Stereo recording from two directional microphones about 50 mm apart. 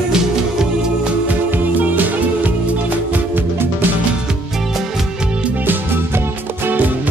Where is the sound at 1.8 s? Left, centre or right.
Right.